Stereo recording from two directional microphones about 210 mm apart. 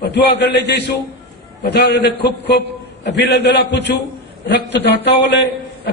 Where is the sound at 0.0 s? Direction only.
50° left (ahead or behind).